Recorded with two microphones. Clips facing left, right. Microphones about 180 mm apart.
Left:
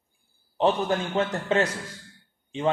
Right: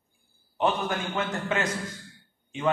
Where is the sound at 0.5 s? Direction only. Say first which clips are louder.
Left 4 dB; 30° left (ahead or behind).